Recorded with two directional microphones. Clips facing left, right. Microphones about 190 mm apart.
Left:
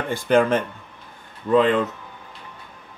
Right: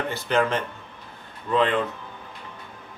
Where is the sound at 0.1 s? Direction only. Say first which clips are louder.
Left 8 dB; 50° left (ahead or behind).